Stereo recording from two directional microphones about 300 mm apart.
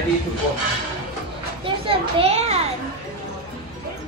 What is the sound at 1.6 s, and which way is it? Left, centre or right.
Children playing, centre.